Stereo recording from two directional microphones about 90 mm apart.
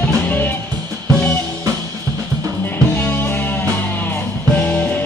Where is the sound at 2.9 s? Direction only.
20° left (ahead or behind).